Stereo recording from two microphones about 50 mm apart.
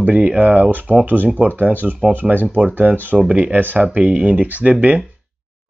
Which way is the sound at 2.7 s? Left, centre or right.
Right.